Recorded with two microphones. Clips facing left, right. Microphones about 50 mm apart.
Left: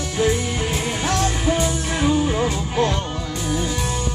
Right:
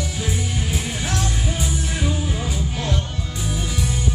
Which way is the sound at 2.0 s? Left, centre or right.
Left.